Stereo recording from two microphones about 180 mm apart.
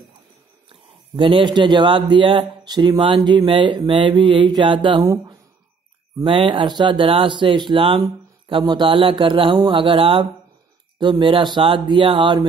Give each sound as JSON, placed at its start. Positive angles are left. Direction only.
{"t": 0.7, "sound": "speech", "side_deg": -30}